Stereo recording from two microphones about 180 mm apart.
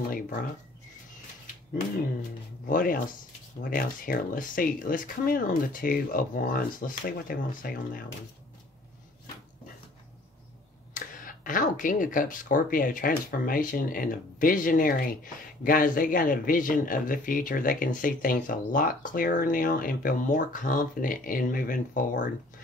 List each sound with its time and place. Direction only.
2.6 s speech: 50° left (ahead or behind)
10.9 s speech: 45° left (ahead or behind)